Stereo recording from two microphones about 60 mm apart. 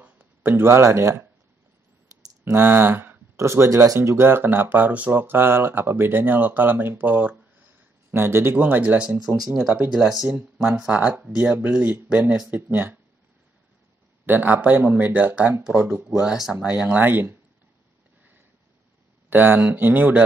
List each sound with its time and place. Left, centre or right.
0.0 s speech: right
2.6 s speech: right
3.3 s speech: right
5.2 s speech: right
8.1 s speech: right; by 9.2 s centre
9.8 s speech: centre
10.8 s speech: centre
14.2 s speech: right
16.2 s speech: centre
16.9 s speech: right
19.2 s speech: right